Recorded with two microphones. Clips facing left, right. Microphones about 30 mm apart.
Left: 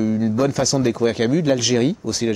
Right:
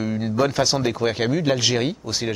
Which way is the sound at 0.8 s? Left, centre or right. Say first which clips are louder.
Left 3 dB; centre.